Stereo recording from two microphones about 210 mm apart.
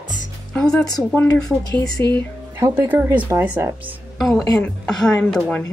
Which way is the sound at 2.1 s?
15° right (ahead or behind).